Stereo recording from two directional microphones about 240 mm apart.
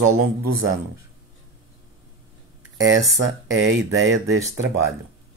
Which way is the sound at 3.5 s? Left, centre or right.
Right.